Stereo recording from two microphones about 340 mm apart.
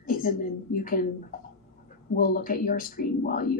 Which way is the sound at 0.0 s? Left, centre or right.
Left.